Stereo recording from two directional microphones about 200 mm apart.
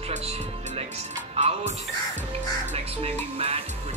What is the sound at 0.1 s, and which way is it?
Music, 30° right (ahead or behind).